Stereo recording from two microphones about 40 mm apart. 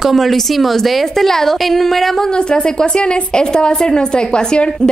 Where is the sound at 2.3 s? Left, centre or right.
Left.